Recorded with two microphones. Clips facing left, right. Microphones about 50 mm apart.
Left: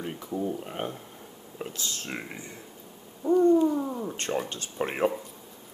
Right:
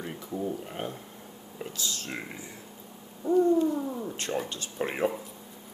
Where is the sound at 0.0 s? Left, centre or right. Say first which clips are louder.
Left 2 dB; centre.